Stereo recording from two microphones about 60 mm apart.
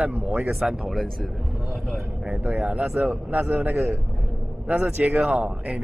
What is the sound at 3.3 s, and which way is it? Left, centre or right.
Speech, right.